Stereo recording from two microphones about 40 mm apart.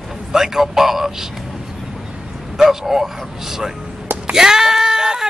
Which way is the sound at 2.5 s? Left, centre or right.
Centre.